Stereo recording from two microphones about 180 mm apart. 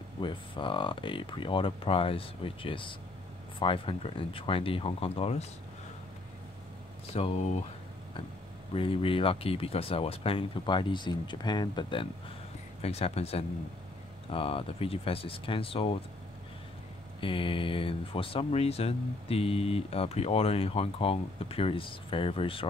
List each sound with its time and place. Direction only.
0.2 s speech: 25° left (ahead or behind)
7.2 s speech: 35° left (ahead or behind)
8.7 s speech: 30° left (ahead or behind)
17.2 s speech: 30° left (ahead or behind)